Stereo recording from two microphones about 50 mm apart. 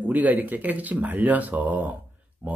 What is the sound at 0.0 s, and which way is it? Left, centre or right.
Speech, right.